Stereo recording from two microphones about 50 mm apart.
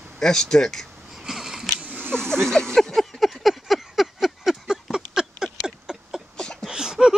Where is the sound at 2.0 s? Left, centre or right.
Centre.